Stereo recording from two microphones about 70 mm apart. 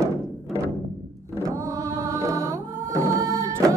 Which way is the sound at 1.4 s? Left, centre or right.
Right.